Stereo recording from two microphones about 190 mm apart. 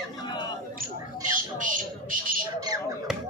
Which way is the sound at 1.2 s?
45° right (ahead or behind).